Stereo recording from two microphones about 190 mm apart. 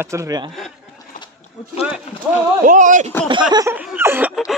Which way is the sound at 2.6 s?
40° right (ahead or behind).